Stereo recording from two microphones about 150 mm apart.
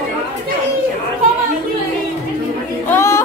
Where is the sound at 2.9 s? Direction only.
20° left (ahead or behind).